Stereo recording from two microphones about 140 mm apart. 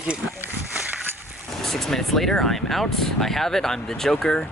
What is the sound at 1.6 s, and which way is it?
Speech, centre (ahead or behind).